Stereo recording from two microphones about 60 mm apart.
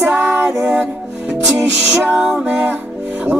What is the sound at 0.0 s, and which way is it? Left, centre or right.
Music, right.